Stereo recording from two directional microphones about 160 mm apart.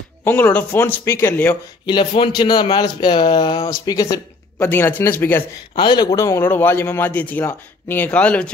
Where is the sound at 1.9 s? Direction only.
30° left (ahead or behind); by 5.4 s 15° left (ahead or behind).